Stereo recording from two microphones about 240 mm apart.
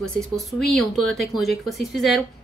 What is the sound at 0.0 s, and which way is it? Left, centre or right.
A woman's voice, centre.